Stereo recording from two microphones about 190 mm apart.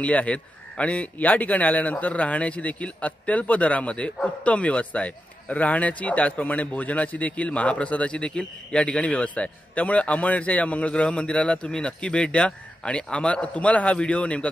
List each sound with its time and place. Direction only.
0.0 s a man's voice: 5° left (ahead or behind)